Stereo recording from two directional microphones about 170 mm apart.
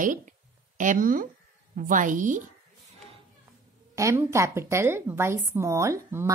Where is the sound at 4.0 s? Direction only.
15° right (ahead or behind).